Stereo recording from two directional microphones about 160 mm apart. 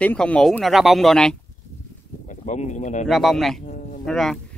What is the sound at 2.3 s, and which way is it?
Speech, 50° left (ahead or behind).